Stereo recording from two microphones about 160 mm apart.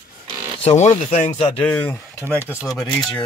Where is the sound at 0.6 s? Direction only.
45° left (ahead or behind).